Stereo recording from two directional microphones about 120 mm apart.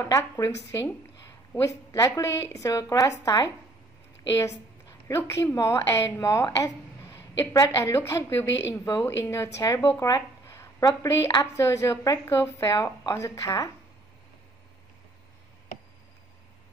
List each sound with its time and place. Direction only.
0.0 s speech: 25° left (ahead or behind)
1.5 s speech: 25° left (ahead or behind)
5.0 s a woman's voice: 20° left (ahead or behind)